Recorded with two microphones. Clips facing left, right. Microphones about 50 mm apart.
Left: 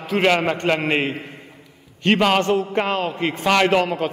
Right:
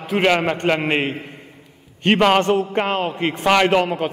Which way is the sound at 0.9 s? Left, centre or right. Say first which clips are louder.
Even; right.